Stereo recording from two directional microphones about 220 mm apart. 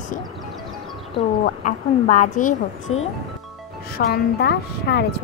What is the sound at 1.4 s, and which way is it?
A woman's voice, 35° left (ahead or behind).